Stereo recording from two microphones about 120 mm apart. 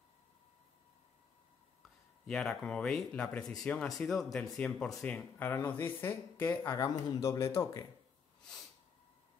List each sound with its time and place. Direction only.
2.2 s speech: 5° left (ahead or behind); by 7.8 s 25° left (ahead or behind)